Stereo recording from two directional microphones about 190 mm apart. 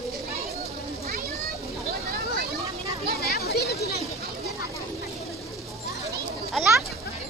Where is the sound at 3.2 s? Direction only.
55° left (ahead or behind).